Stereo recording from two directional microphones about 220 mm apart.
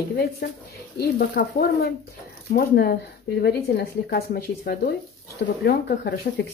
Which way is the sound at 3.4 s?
45° left (ahead or behind).